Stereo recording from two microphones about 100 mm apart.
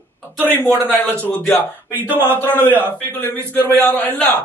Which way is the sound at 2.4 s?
20° left (ahead or behind).